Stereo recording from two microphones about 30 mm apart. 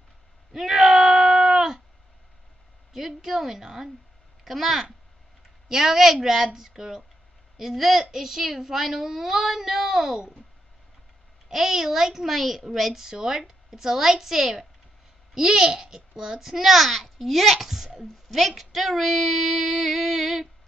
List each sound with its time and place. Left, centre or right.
0.5 s a sound: centre
2.9 s a woman's voice: centre
4.5 s female singing: centre
5.7 s a child's voice: centre
11.5 s a child's voice: centre
12.7 s female singing: centre
13.0 s a child's voice: centre
15.3 s a child's voice: centre
18.6 s female singing: centre